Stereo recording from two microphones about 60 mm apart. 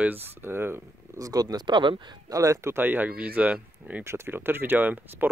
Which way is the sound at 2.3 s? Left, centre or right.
Right.